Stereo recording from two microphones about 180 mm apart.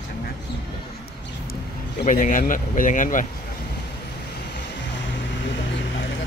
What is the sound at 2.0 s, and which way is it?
Speech, 45° left (ahead or behind).